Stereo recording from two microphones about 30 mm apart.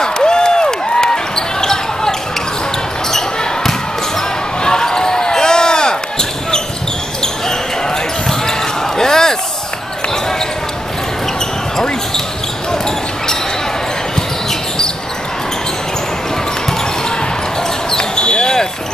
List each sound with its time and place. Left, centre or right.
0.0 s basketball bounce: left
17.9 s basketball bounce: left